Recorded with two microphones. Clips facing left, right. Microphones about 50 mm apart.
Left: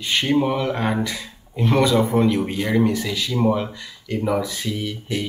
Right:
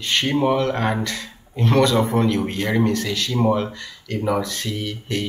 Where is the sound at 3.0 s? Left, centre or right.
Centre.